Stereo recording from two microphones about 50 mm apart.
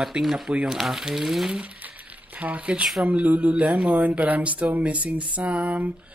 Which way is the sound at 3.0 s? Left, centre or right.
Right.